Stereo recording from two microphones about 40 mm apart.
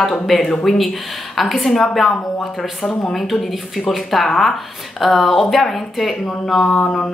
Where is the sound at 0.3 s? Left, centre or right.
Centre.